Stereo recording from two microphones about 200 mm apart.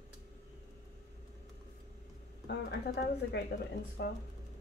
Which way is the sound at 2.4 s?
60° left (ahead or behind).